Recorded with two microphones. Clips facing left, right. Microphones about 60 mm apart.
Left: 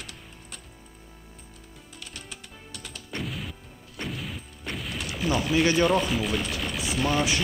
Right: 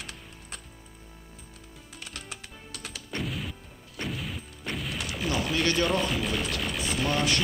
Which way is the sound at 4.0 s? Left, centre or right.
Centre.